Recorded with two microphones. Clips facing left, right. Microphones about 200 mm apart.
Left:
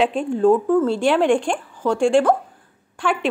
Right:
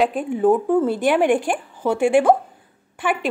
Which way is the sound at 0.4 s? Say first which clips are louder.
Left 1 dB; 15° right (ahead or behind).